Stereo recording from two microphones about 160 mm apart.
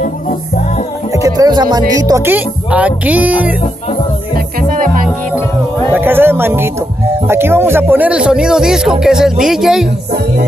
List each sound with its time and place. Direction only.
1.1 s music: 20° right (ahead or behind)
4.6 s music: 60° right (ahead or behind)
5.9 s speech: 15° right (ahead or behind)